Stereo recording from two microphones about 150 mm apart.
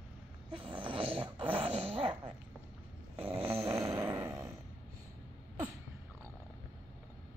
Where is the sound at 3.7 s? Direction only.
20° right (ahead or behind).